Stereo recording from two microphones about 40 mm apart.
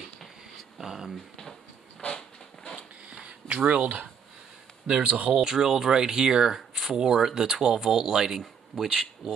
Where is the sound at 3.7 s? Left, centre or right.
Right.